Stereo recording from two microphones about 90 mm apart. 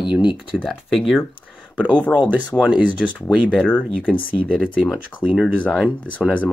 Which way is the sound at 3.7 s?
15° left (ahead or behind).